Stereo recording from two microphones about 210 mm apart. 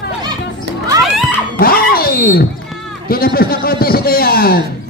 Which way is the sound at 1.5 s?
45° left (ahead or behind).